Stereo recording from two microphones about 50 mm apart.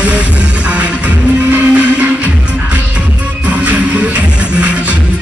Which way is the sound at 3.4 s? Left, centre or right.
Right.